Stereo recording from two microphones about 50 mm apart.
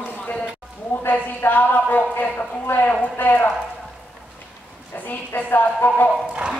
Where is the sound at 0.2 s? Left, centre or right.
Left.